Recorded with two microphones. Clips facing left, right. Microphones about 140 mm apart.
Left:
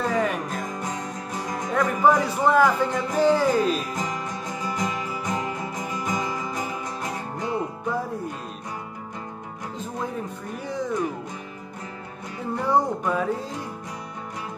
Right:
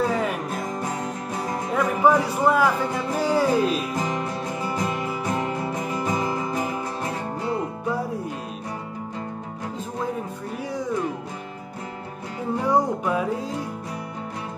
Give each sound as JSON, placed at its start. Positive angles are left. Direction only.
{"t": 0.0, "sound": "music", "side_deg": -5}
{"t": 1.7, "sound": "speech", "side_deg": -5}
{"t": 4.1, "sound": "music", "side_deg": -25}
{"t": 12.6, "sound": "music", "side_deg": -5}